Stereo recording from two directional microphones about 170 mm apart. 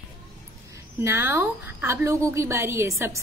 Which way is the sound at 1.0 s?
15° right (ahead or behind).